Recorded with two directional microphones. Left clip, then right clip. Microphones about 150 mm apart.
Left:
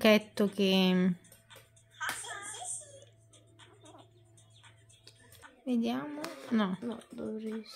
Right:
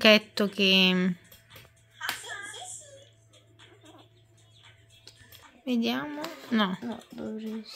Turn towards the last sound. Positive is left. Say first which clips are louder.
# right 2 dB
turn(degrees=-35)  # may be behind; listen again after turning